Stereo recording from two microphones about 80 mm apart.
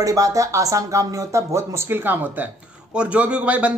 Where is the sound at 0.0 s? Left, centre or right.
Right.